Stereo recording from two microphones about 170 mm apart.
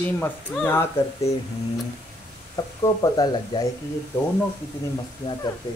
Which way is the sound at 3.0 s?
25° left (ahead or behind).